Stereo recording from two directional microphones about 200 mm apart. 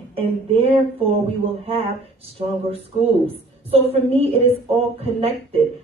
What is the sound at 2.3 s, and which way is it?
A woman's voice, 30° right (ahead or behind).